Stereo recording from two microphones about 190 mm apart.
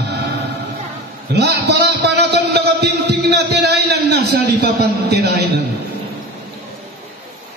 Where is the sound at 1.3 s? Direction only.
60° right (ahead or behind).